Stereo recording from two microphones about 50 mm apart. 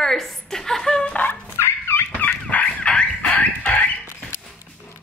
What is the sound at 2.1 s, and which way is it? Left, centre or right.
Fowl, left.